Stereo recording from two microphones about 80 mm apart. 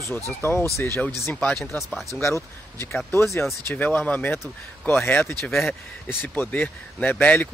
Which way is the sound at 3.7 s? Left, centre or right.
Centre.